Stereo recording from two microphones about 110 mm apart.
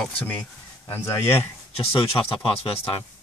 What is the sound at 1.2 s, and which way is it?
Speech, 65° left (ahead or behind).